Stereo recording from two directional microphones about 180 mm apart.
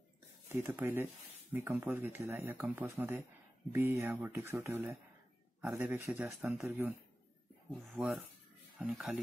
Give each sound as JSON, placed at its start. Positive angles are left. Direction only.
{"t": 0.5, "sound": "speech", "side_deg": -10}
{"t": 7.7, "sound": "speech", "side_deg": 0}